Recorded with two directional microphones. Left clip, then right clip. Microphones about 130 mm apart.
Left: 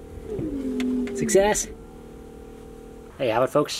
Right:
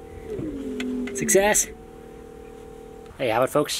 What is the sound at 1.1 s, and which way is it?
Speech, 10° right (ahead or behind).